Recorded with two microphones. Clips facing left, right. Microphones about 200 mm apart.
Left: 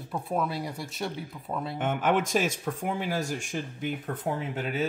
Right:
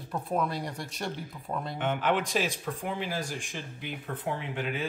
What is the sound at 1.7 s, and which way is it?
Speech, 50° left (ahead or behind).